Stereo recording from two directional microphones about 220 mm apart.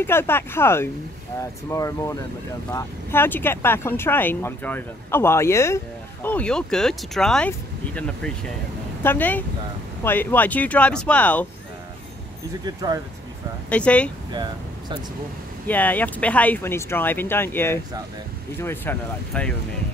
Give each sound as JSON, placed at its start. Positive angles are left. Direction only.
{"t": 0.0, "sound": "speech", "side_deg": 10}
{"t": 12.6, "sound": "speech", "side_deg": -20}
{"t": 13.7, "sound": "speech", "side_deg": 5}
{"t": 14.3, "sound": "speech", "side_deg": -20}
{"t": 15.6, "sound": "speech", "side_deg": 10}